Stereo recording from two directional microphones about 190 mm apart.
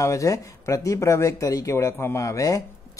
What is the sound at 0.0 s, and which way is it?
Speech, 15° left (ahead or behind).